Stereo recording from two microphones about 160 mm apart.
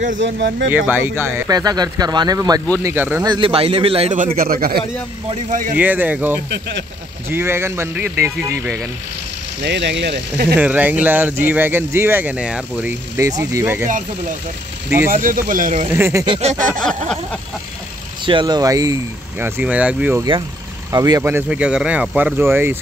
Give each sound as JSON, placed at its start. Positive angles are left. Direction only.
{"t": 0.4, "sound": "speech", "side_deg": -90}
{"t": 0.7, "sound": "speech", "side_deg": -10}
{"t": 3.3, "sound": "a man's voice", "side_deg": -30}
{"t": 5.5, "sound": "speech", "side_deg": -55}
{"t": 5.8, "sound": "speech", "side_deg": -10}
{"t": 9.6, "sound": "speech", "side_deg": -90}
{"t": 10.6, "sound": "speech", "side_deg": -10}
{"t": 15.0, "sound": "speech", "side_deg": -60}
{"t": 15.9, "sound": "speech", "side_deg": -15}
{"t": 16.3, "sound": "a man's voice", "side_deg": -40}
{"t": 16.8, "sound": "a sound", "side_deg": 5}
{"t": 18.2, "sound": "speech", "side_deg": -30}
{"t": 19.4, "sound": "speech", "side_deg": -10}
{"t": 20.9, "sound": "speech", "side_deg": -20}